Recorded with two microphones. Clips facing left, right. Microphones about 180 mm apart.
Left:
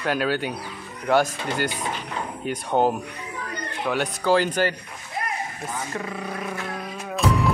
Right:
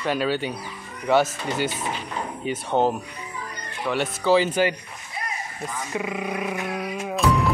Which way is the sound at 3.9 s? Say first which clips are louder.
Right 1 dB; centre (ahead or behind).